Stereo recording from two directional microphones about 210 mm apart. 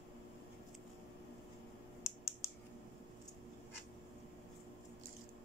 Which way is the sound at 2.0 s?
15° left (ahead or behind).